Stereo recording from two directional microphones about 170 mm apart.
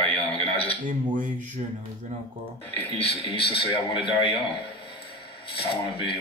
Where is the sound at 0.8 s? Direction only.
25° right (ahead or behind).